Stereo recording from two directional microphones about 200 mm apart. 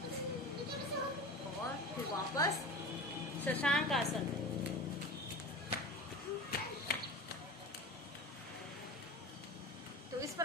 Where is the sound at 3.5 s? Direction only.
5° left (ahead or behind).